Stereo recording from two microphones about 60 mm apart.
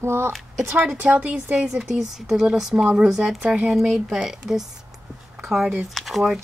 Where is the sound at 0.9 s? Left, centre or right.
Right.